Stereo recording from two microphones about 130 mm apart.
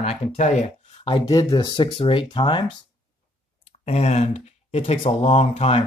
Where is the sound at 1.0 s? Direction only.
35° left (ahead or behind).